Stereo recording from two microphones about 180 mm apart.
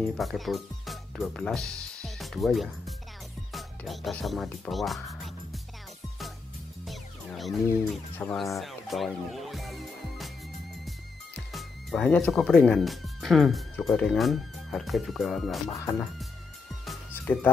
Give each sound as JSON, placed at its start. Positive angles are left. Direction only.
{"t": 0.0, "sound": "speech", "side_deg": 0}
{"t": 6.8, "sound": "music", "side_deg": 0}
{"t": 7.9, "sound": "speech", "side_deg": 5}
{"t": 11.3, "sound": "speech", "side_deg": 5}
{"t": 15.7, "sound": "speech", "side_deg": 15}
{"t": 17.1, "sound": "music", "side_deg": 10}